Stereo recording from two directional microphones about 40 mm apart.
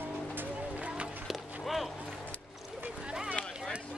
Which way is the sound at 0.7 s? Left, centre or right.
Right.